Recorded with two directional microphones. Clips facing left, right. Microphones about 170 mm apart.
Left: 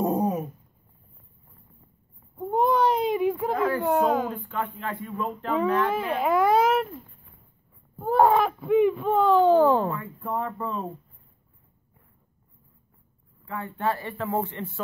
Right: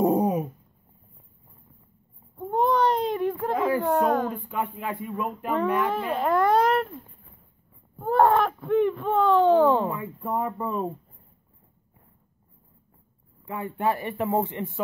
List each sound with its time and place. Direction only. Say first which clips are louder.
2.3 s baby cry: even; 5° left (ahead or behind)
3.5 s a sound: right 1 dB; 10° right (ahead or behind)
3.8 s a sound: even; 5° left (ahead or behind)
4.3 s speech: right 1 dB; 10° right (ahead or behind)
5.9 s speech: even; 5° left (ahead or behind)
8.0 s speech: even; 5° left (ahead or behind)
9.8 s speech: right 1 dB; 15° right (ahead or behind)
13.5 s speech: right 2 dB; 15° right (ahead or behind)